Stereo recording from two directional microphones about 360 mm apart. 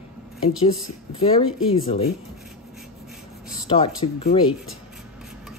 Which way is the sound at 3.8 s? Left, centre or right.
Centre.